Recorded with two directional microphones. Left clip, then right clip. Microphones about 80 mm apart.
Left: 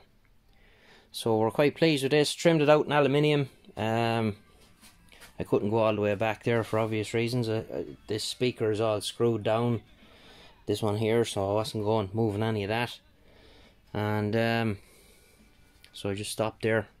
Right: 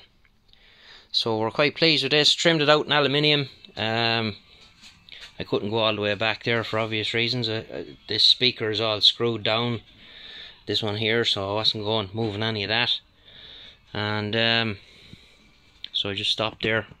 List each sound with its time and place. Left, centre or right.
0.8 s speech: left; by 9.8 s centre
10.1 s a sound: centre
10.9 s speech: left
12.3 s a sound: centre
14.3 s speech: left
16.0 s speech: left